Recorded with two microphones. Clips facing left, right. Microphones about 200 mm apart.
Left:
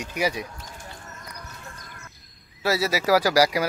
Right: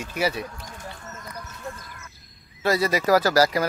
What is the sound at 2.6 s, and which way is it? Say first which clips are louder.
Speech: right 2 dB; 5° left (ahead or behind).